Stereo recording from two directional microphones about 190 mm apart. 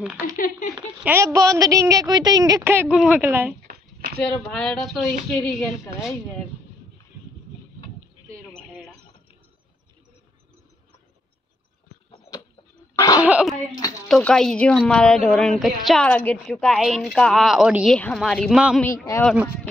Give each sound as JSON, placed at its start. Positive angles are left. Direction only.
{"t": 0.0, "sound": "a woman's voice", "side_deg": -5}
{"t": 3.6, "sound": "a sound", "side_deg": -55}
{"t": 4.2, "sound": "a woman's voice", "side_deg": 0}
{"t": 12.9, "sound": "cough", "side_deg": 20}
{"t": 13.2, "sound": "a woman's voice", "side_deg": -5}